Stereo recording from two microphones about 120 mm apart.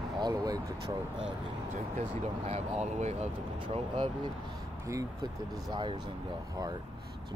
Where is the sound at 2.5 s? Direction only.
65° right (ahead or behind).